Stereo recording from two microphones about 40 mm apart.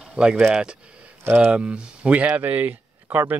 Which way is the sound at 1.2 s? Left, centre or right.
Right.